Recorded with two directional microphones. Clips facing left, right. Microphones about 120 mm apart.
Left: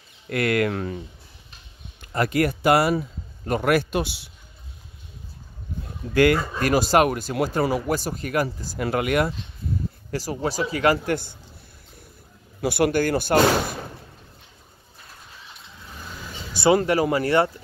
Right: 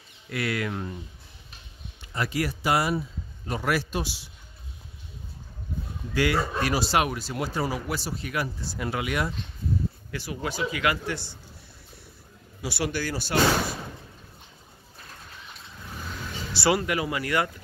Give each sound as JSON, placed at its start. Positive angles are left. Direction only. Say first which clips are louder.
{"t": 0.3, "sound": "a man's voice", "louder": "left 7 dB", "side_deg": 55}
{"t": 2.0, "sound": "a man's voice", "louder": "left 7 dB", "side_deg": 55}
{"t": 6.1, "sound": "a man's voice", "louder": "left 6 dB", "side_deg": 50}
{"t": 10.1, "sound": "a man's voice", "louder": "left 8 dB", "side_deg": 40}
{"t": 12.6, "sound": "speech", "louder": "left 9 dB", "side_deg": 50}
{"t": 16.7, "sound": "a man's voice", "louder": "left 7 dB", "side_deg": 35}